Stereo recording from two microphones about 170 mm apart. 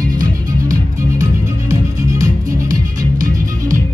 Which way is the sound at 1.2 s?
20° right (ahead or behind).